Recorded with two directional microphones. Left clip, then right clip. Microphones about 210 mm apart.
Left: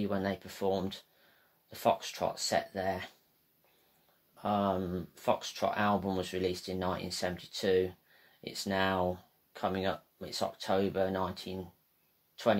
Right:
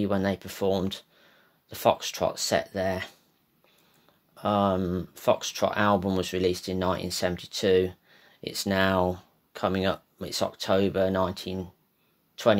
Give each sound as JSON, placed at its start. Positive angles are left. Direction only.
{"t": 0.0, "sound": "speech", "side_deg": -50}
{"t": 4.4, "sound": "speech", "side_deg": -50}